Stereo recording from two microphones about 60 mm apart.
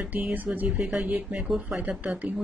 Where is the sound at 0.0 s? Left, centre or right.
Right.